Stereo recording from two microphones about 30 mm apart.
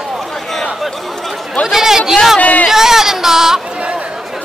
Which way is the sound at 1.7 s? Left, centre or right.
Centre.